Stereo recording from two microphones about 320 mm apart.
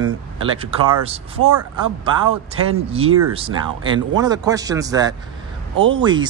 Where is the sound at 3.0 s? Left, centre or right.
Right.